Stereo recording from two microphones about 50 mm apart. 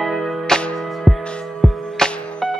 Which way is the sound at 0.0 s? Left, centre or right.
Centre.